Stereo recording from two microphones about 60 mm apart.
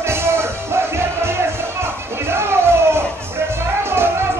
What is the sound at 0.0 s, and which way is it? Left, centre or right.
Music, right.